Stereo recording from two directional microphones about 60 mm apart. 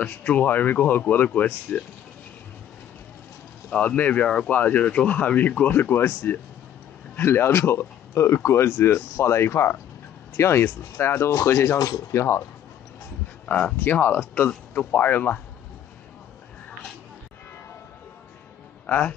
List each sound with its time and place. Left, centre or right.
0.0 s speech: left
3.7 s speech: left
5.7 s speech: left
13.7 s speech: left
18.9 s a man's voice: left